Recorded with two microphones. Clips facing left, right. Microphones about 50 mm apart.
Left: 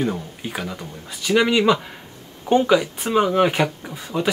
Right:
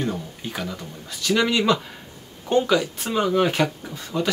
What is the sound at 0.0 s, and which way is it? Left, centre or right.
Speech, centre.